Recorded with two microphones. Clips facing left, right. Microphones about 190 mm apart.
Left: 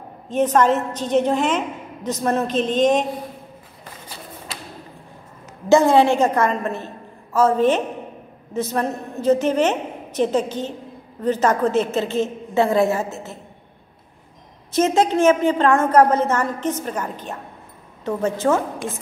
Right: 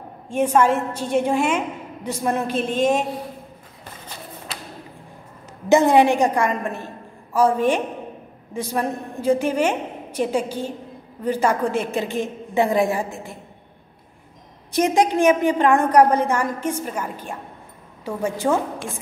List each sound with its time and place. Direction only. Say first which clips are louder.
0.3 s a woman's voice: left 1 dB; 10° right (ahead or behind)
5.7 s a woman's voice: left 1 dB; 15° right (ahead or behind)
14.7 s a woman's voice: left 1 dB; 15° right (ahead or behind)